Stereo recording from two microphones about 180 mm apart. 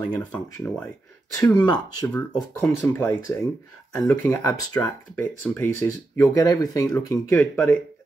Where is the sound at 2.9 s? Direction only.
15° left (ahead or behind).